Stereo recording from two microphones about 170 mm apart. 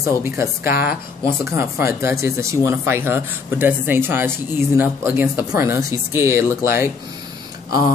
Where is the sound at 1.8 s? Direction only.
15° right (ahead or behind).